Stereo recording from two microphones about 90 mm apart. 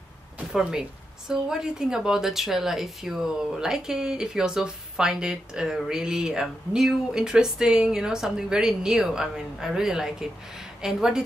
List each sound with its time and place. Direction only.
0.5 s speech: 5° right (ahead or behind)